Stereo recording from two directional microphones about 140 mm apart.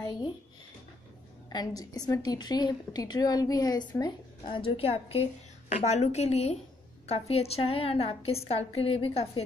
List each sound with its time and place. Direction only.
0.0 s a sound: 30° left (ahead or behind)
1.5 s a woman's voice: 25° left (ahead or behind); by 5.2 s 40° left (ahead or behind)
5.7 s a woman's voice: 55° left (ahead or behind)